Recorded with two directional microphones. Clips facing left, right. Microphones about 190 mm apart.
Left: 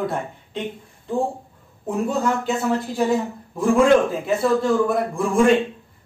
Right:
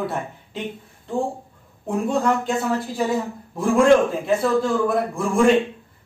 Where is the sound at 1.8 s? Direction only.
Centre (ahead or behind).